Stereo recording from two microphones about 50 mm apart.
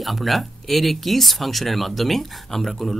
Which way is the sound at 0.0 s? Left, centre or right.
Centre.